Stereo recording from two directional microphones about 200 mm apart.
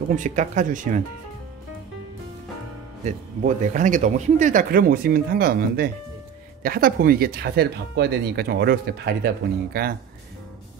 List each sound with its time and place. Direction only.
0.1 s speech: 40° right (ahead or behind)
3.1 s speech: 40° right (ahead or behind)